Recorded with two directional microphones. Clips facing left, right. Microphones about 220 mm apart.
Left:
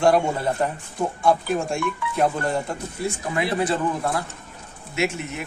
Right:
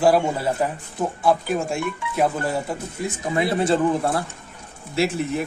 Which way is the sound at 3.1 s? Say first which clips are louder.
Right 3 dB; 25° right (ahead or behind).